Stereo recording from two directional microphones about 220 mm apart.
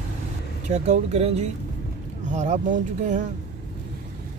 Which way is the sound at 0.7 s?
30° right (ahead or behind).